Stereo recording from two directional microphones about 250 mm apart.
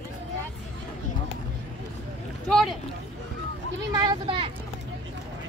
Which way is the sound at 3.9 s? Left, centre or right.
Centre.